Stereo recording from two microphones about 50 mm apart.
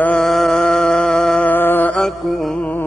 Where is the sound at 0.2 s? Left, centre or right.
Centre.